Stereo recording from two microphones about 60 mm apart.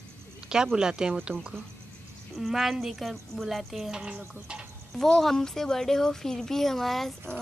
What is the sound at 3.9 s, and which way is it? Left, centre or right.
Speech, centre.